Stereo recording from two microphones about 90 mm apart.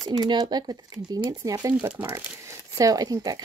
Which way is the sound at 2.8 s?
45° right (ahead or behind).